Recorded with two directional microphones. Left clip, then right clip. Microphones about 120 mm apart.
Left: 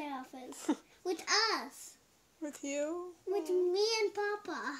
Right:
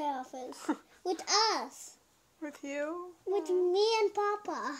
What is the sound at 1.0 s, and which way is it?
Speech, 15° left (ahead or behind).